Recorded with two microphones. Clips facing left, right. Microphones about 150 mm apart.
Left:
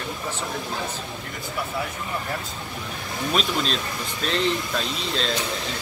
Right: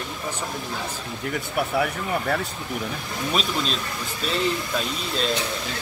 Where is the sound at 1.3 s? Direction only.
65° right (ahead or behind).